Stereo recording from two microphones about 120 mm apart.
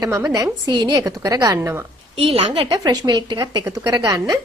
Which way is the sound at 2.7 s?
30° right (ahead or behind).